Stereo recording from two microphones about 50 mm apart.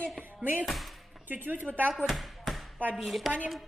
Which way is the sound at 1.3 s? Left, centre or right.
Right.